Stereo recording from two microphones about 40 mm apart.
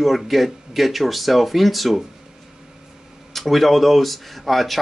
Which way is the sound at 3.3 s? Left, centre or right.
Centre.